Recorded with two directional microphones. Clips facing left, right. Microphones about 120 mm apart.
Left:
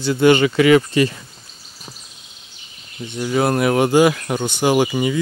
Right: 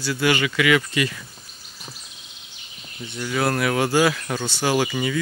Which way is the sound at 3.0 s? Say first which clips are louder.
Left 5 dB; 20° left (ahead or behind).